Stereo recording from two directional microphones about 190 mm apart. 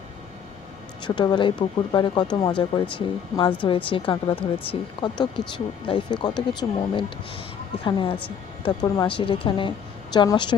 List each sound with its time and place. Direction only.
1.0 s a woman's voice: 25° left (ahead or behind)